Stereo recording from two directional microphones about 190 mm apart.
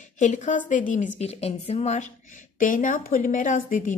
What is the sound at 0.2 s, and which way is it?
A woman's voice, 40° left (ahead or behind).